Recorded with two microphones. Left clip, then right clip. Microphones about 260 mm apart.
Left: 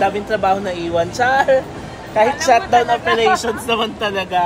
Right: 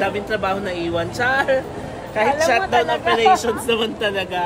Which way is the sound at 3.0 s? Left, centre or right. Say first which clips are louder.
Even; centre.